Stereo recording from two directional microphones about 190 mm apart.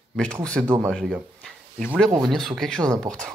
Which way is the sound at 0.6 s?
10° right (ahead or behind).